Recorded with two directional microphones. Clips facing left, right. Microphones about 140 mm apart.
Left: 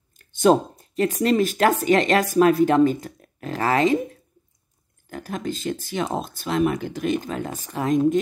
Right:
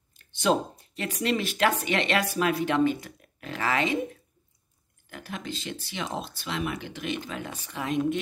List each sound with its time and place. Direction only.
0.2 s speech: 45° left (ahead or behind)